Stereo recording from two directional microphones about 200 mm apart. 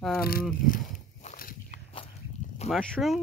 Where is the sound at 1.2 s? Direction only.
45° left (ahead or behind).